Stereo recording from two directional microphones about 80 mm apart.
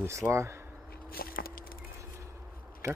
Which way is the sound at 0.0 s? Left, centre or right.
Right.